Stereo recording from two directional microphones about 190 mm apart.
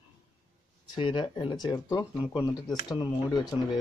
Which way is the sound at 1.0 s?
25° left (ahead or behind).